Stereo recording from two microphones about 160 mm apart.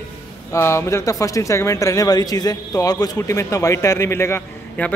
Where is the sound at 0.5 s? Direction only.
15° left (ahead or behind).